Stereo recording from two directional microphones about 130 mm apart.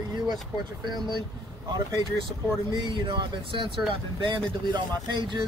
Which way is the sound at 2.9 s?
35° right (ahead or behind).